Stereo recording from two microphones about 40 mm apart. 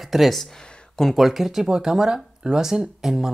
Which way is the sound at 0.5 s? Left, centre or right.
Left.